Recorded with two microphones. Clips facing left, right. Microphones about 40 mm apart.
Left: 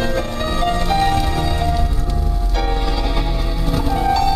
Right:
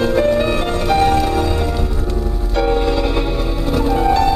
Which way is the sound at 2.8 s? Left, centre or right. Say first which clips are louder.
Right 5 dB; centre.